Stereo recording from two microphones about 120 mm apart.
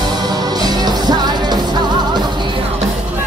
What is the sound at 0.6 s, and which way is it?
Music, 35° right (ahead or behind).